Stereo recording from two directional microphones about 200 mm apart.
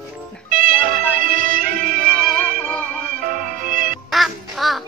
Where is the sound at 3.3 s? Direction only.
45° right (ahead or behind).